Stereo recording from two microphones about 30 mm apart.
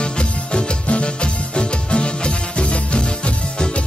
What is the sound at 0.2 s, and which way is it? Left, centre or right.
Music, left.